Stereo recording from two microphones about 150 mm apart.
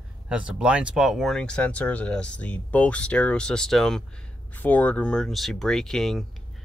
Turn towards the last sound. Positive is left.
turn(degrees=0)  # may be behind; listen again after turning